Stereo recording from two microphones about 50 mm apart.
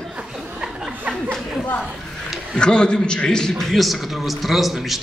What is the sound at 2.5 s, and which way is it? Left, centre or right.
A man's voice, centre.